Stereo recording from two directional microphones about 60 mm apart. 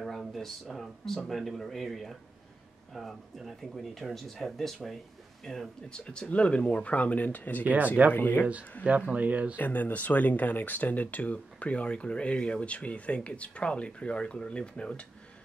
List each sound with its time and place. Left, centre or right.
0.0 s speech: centre; by 7.6 s left
7.6 s speech: right
8.1 s speech: left
9.1 s speech: right
9.6 s speech: left